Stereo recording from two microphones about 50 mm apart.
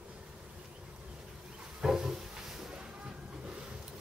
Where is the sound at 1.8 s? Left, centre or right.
Centre.